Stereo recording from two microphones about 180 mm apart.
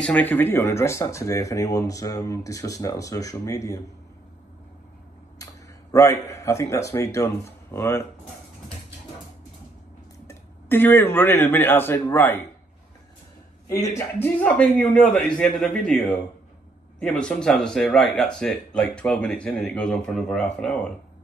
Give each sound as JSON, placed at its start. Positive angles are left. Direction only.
{"t": 0.0, "sound": "speech", "side_deg": 10}
{"t": 5.4, "sound": "speech", "side_deg": 20}
{"t": 10.2, "sound": "speech", "side_deg": 10}
{"t": 13.9, "sound": "speech", "side_deg": 10}